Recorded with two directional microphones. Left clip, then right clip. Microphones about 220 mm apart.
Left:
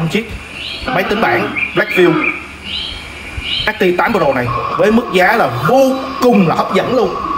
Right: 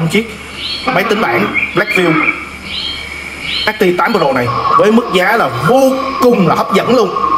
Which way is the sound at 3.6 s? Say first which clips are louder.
Right 2 dB; 10° right (ahead or behind).